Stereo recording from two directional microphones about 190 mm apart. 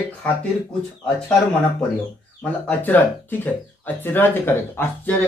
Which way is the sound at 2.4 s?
10° left (ahead or behind).